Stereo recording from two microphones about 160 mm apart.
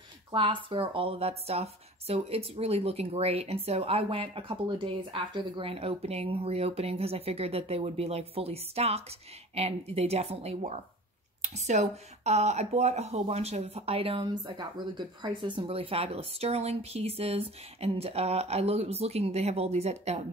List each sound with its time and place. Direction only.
0.3 s speech: 30° right (ahead or behind)